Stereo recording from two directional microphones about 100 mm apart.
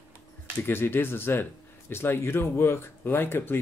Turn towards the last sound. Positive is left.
turn(degrees=20)  # may be behind; listen again after turning